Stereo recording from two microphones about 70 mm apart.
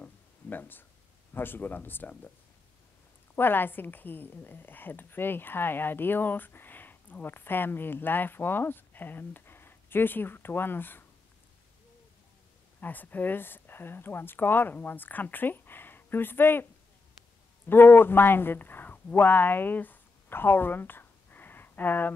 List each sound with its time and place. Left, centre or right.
0.0 s a sound: left
1.3 s a woman's voice: left
3.3 s a woman's voice: left
12.8 s a woman's voice: left
17.6 s speech: left